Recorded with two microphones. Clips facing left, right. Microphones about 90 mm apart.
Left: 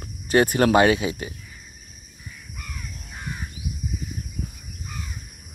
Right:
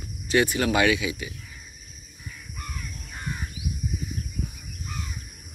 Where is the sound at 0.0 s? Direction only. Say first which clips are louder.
Left 3 dB; 45° left (ahead or behind).